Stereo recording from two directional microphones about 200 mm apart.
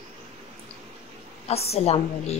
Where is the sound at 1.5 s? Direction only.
30° left (ahead or behind).